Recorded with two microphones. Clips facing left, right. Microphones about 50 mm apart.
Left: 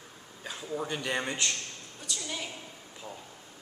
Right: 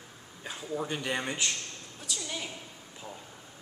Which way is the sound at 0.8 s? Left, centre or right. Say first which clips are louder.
Left 1 dB; centre.